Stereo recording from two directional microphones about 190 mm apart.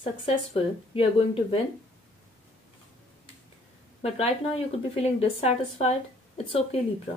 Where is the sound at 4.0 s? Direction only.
30° left (ahead or behind).